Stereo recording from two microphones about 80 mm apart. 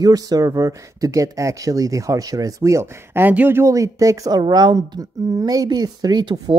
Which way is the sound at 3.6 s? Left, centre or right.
Right.